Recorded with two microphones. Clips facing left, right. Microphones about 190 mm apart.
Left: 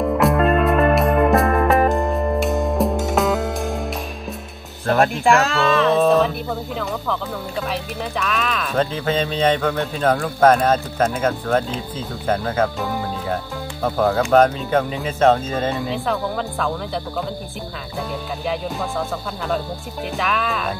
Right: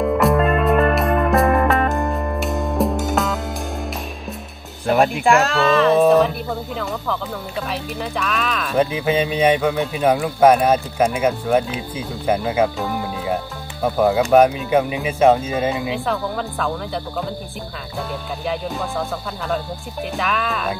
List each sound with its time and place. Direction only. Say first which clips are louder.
0.2 s music: left 2 dB; centre (ahead or behind)
1.8 s music: left 3 dB; 15° left (ahead or behind)
2.4 s music: left 1 dB; centre (ahead or behind)
4.8 s music: right 1 dB; centre (ahead or behind)
5.2 s speech: right 1 dB; centre (ahead or behind)
8.7 s a man's voice: right 3 dB; 10° right (ahead or behind)
13.8 s a man's voice: right 2 dB; 10° right (ahead or behind)
18.5 s speech: even; centre (ahead or behind)